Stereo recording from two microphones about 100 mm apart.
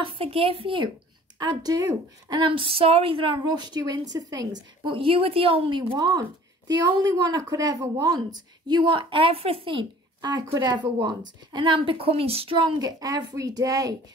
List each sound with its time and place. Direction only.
0.0 s speech: 70° right (ahead or behind)
1.4 s a woman's voice: 45° right (ahead or behind)
4.8 s speech: 60° right (ahead or behind)
5.9 s a woman's voice: 45° right (ahead or behind); by 9.8 s 65° right (ahead or behind)
10.6 s a woman's voice: 45° right (ahead or behind)